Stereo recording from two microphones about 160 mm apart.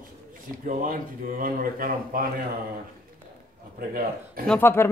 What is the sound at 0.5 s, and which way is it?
Speech, 60° right (ahead or behind).